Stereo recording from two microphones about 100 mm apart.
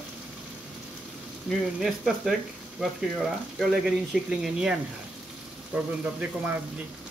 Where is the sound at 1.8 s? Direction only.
5° right (ahead or behind).